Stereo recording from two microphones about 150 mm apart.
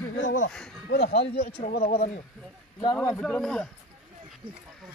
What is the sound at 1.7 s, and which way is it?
Speech, 75° left (ahead or behind).